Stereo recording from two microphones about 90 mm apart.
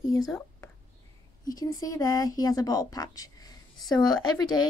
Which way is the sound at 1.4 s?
45° left (ahead or behind).